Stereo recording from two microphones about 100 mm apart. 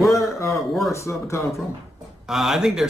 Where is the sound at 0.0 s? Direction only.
30° left (ahead or behind).